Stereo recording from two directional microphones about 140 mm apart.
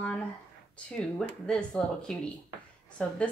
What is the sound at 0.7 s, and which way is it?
A woman's voice, 10° left (ahead or behind).